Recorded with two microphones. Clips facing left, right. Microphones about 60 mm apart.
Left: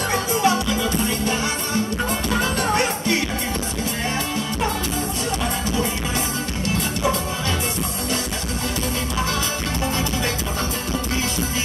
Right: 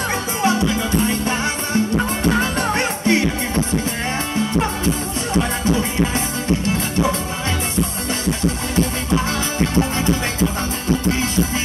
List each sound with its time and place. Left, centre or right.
0.1 s music: right
5.3 s music: right
9.8 s music: right